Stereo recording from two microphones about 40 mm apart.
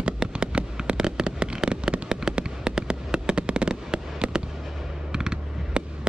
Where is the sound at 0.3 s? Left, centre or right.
Right.